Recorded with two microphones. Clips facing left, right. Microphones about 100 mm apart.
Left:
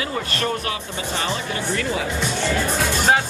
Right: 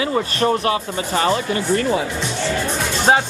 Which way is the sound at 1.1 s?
45° right (ahead or behind).